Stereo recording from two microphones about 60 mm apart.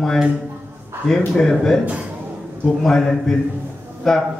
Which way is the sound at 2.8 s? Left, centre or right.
Centre.